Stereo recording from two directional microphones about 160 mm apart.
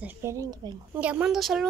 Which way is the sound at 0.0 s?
15° right (ahead or behind).